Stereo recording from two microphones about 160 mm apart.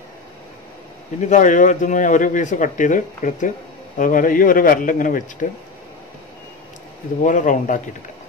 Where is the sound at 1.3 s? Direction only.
50° left (ahead or behind).